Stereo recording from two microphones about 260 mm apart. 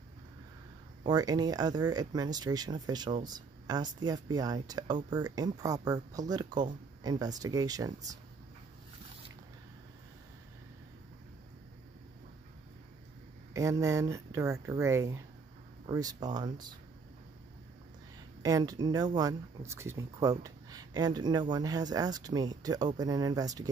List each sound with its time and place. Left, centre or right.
1.0 s speech: centre
13.5 s speech: centre
18.4 s speech: centre